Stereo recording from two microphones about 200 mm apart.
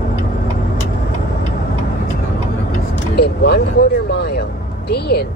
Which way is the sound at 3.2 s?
55° left (ahead or behind).